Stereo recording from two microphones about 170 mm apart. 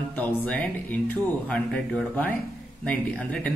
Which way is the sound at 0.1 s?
10° left (ahead or behind).